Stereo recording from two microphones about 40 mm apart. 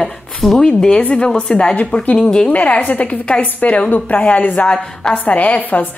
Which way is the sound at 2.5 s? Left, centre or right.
Left.